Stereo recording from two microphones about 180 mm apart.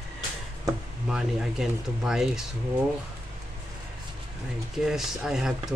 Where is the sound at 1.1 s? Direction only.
5° right (ahead or behind).